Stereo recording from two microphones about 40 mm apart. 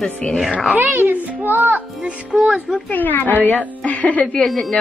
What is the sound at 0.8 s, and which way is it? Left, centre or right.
A child's voice, right.